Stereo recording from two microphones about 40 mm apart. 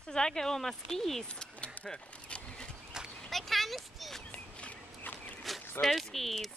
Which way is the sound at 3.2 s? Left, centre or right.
Centre.